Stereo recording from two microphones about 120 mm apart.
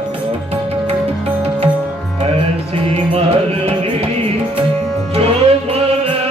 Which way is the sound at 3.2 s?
55° right (ahead or behind).